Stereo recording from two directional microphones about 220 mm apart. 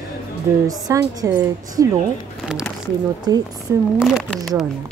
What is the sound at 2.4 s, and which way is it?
Speech, 5° right (ahead or behind).